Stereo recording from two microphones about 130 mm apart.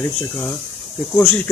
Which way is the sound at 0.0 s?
20° left (ahead or behind).